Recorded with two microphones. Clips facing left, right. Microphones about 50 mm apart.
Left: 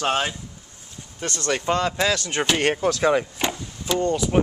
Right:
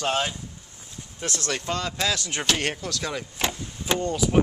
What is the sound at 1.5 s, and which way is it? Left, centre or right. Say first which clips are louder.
Speech: left 10 dB; centre.